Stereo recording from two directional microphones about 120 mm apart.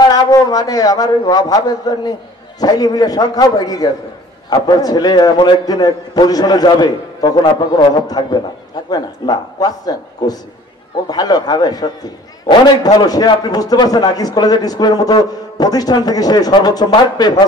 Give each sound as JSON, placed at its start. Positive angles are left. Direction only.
{"t": 0.0, "sound": "a man's voice", "side_deg": 30}